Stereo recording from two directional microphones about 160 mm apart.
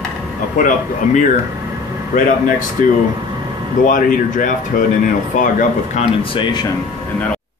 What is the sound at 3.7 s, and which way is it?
Speech, 55° left (ahead or behind).